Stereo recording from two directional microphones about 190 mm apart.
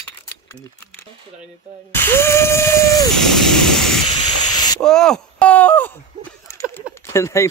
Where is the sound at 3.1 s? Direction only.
Centre (ahead or behind).